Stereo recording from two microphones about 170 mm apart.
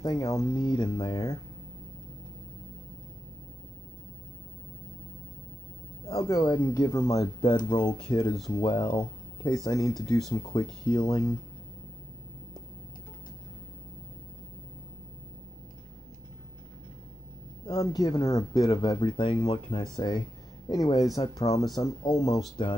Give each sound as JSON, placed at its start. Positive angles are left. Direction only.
{"t": 0.0, "sound": "speech", "side_deg": 20}
{"t": 6.0, "sound": "speech", "side_deg": 20}
{"t": 17.6, "sound": "speech", "side_deg": 20}